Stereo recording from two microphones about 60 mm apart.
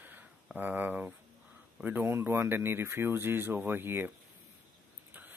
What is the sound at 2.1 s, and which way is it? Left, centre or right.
Speech, right.